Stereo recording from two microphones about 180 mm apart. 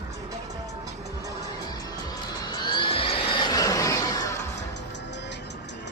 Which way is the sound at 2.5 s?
25° left (ahead or behind).